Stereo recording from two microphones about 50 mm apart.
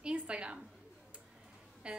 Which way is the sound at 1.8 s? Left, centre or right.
Centre.